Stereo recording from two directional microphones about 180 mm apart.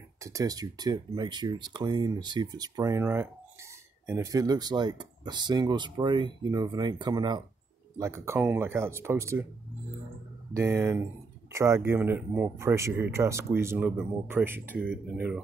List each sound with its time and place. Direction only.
0.2 s speech: 20° right (ahead or behind)
10.5 s speech: 15° right (ahead or behind)